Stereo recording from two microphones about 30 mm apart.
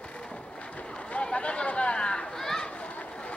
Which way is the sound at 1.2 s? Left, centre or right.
Left.